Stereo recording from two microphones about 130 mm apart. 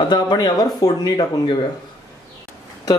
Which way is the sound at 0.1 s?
30° left (ahead or behind).